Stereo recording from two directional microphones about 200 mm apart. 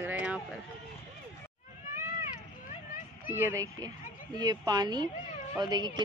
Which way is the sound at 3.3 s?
10° right (ahead or behind).